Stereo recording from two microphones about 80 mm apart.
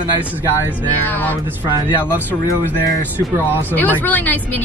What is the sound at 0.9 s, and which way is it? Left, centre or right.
Speech, left.